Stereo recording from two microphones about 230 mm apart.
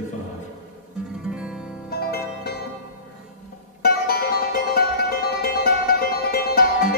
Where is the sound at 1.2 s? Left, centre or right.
Centre.